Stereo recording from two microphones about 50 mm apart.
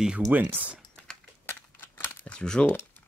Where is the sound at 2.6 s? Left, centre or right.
Left.